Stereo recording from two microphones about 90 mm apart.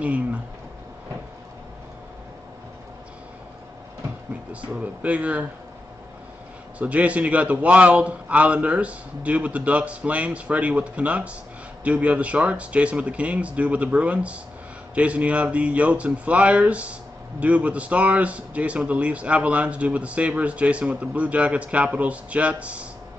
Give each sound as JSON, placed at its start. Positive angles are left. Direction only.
{"t": 0.0, "sound": "a sound", "side_deg": -15}
{"t": 4.5, "sound": "speech", "side_deg": -15}
{"t": 6.8, "sound": "speech", "side_deg": -15}